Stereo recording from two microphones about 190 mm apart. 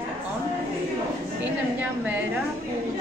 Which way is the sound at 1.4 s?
10° right (ahead or behind).